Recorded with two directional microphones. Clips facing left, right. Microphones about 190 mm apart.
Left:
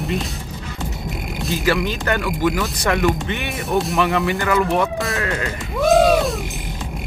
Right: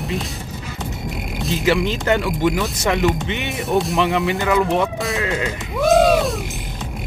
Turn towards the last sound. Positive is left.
turn(degrees=0)  # may be behind; listen again after turning